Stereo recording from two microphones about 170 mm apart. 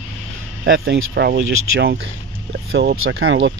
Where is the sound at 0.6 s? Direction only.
85° right.